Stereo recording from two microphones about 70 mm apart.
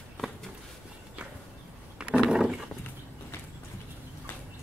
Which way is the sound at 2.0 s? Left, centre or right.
Centre.